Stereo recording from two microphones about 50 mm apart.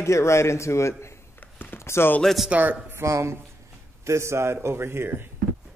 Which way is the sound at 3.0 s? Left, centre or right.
Right.